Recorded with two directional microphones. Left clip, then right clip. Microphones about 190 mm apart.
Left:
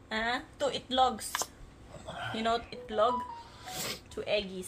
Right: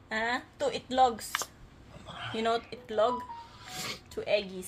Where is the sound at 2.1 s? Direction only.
15° left (ahead or behind).